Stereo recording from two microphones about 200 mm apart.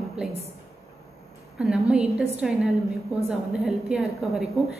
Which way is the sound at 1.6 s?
5° right (ahead or behind).